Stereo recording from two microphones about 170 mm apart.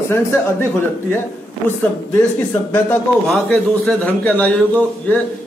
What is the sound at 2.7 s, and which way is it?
A man's voice, 10° left (ahead or behind).